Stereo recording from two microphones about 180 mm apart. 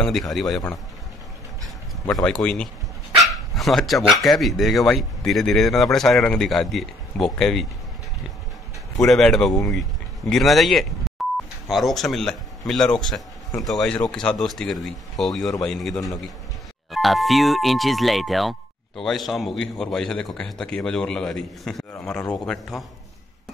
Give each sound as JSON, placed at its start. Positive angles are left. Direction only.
{"t": 0.0, "sound": "speech", "side_deg": 0}
{"t": 2.2, "sound": "speech", "side_deg": 5}
{"t": 9.0, "sound": "speech", "side_deg": 0}